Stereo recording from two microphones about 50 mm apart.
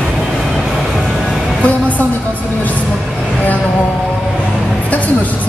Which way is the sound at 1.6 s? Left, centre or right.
Left.